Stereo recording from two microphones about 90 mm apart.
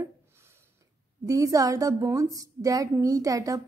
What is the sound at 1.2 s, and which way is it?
A woman's voice, 40° right (ahead or behind).